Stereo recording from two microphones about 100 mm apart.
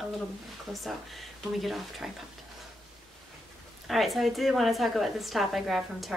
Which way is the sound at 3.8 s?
Centre (ahead or behind).